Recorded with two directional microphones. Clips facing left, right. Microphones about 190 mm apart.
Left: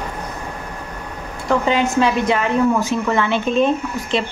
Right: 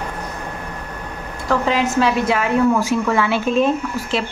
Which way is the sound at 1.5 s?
Centre (ahead or behind).